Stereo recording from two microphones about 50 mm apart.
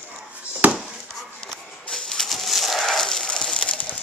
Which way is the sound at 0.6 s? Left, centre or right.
Right.